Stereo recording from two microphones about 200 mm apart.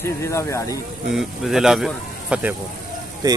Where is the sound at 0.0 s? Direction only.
15° left (ahead or behind).